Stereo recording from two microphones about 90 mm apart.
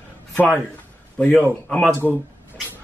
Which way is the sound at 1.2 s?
20° left (ahead or behind).